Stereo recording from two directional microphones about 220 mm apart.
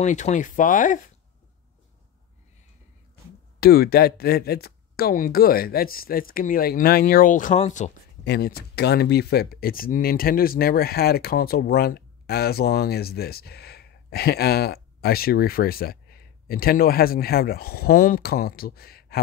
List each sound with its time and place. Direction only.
0.0 s speech: 35° left (ahead or behind)
3.5 s speech: 45° left (ahead or behind)
8.2 s speech: 45° left (ahead or behind)